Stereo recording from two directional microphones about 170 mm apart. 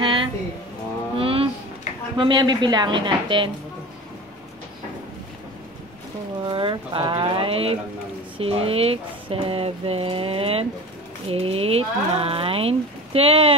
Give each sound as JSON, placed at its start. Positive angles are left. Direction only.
{"t": 0.0, "sound": "a sound", "side_deg": -30}
{"t": 2.1, "sound": "a woman's voice", "side_deg": -25}
{"t": 6.4, "sound": "a woman's voice", "side_deg": -30}